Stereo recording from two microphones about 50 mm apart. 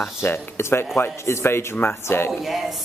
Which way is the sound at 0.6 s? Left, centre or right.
Left.